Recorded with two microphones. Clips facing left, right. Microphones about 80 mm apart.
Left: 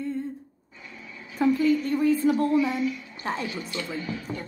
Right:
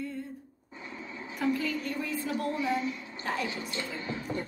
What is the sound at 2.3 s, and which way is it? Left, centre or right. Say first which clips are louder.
A woman's voice: left 7 dB; right.